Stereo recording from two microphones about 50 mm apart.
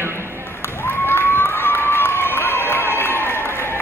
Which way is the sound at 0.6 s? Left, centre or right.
Left.